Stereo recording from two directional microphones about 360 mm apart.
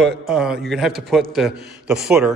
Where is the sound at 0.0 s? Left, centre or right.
Centre.